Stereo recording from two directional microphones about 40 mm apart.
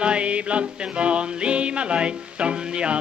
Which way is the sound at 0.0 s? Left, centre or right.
Right.